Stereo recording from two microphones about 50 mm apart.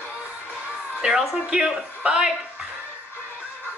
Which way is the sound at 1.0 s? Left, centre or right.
Centre.